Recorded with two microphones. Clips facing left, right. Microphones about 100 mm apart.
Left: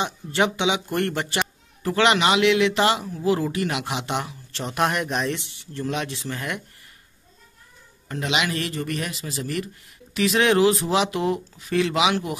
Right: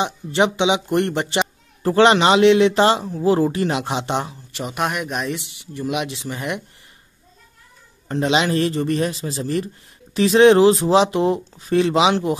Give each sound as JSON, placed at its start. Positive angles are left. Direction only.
{"t": 0.0, "sound": "speech", "side_deg": -20}
{"t": 4.5, "sound": "speech", "side_deg": -10}
{"t": 5.6, "sound": "speech", "side_deg": -10}
{"t": 8.1, "sound": "speech", "side_deg": -30}